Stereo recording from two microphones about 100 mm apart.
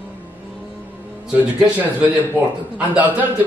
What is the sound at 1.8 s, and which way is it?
A man's voice, 15° right (ahead or behind).